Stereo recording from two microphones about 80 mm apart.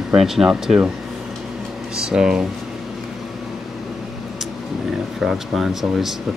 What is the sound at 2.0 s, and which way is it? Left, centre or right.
Speech, centre.